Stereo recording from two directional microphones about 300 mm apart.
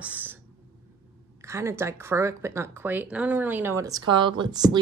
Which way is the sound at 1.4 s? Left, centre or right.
Centre.